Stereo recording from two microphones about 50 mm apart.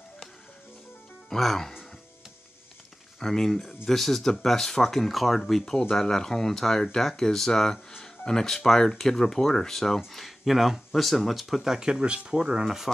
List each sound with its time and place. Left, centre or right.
1.3 s speech: centre
3.2 s speech: centre
12.6 s speech: centre